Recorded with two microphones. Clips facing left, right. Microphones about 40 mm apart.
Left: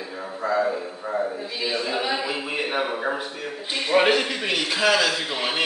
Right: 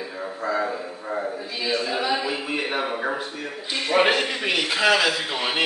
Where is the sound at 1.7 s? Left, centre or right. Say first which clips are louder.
Right 2 dB; centre.